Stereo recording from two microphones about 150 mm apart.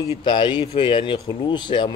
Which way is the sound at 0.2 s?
30° left (ahead or behind).